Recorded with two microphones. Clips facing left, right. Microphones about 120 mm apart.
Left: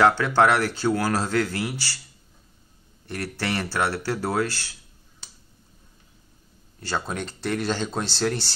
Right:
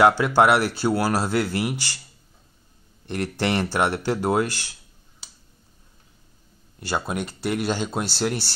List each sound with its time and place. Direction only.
0.0 s speech: 15° right (ahead or behind)
3.1 s speech: 20° right (ahead or behind)
6.8 s speech: 10° right (ahead or behind)